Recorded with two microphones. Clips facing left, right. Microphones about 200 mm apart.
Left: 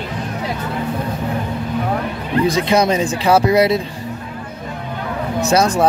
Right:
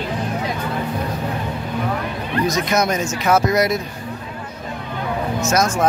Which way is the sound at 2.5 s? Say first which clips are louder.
Left 4 dB; 30° left (ahead or behind).